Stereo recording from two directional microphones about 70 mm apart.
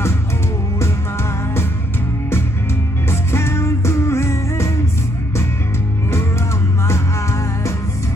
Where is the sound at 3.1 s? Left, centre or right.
Left.